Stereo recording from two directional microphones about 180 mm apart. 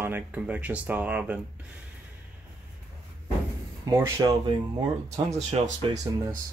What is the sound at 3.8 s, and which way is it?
Speech, 20° right (ahead or behind).